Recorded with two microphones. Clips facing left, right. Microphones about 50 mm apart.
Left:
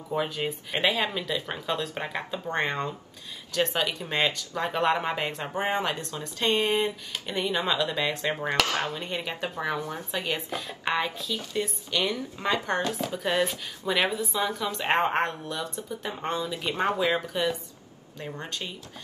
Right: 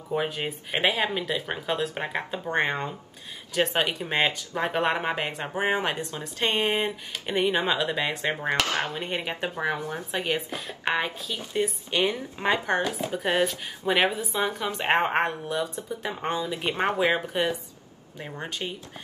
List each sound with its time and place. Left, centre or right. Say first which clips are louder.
0.2 s speech: even; right
3.6 s speech: right 2 dB; right
8.5 s speech: even; right
18.2 s speech: right 1 dB; centre